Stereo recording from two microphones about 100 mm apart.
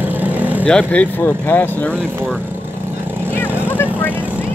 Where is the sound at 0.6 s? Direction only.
10° left (ahead or behind).